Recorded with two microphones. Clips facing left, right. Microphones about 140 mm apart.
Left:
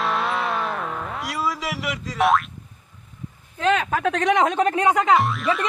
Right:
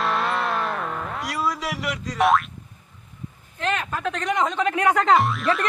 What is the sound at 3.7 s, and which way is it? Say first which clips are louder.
Speech: left 6 dB; 90° left.